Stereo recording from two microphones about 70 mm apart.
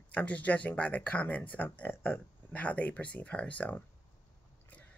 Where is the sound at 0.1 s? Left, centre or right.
Left.